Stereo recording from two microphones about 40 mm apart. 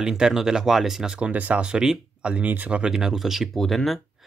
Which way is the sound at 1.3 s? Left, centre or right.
Right.